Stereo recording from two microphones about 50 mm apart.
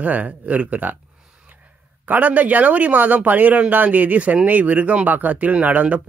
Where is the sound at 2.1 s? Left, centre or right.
Right.